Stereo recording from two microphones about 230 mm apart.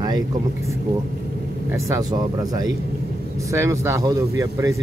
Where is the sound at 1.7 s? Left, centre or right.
Centre.